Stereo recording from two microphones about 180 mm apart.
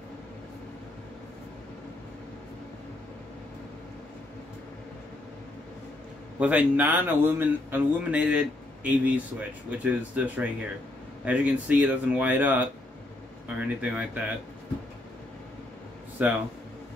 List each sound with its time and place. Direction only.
6.4 s speech: 10° right (ahead or behind)
16.2 s speech: 10° right (ahead or behind)